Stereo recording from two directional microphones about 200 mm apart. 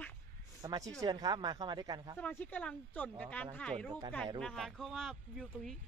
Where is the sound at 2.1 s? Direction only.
5° left (ahead or behind).